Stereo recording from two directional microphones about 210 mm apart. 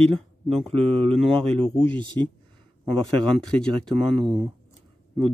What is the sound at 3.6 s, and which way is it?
Speech, 5° left (ahead or behind).